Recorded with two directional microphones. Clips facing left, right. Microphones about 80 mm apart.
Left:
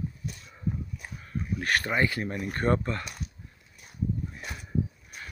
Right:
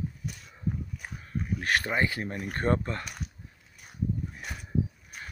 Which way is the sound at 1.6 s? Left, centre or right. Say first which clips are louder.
Left 1 dB; centre.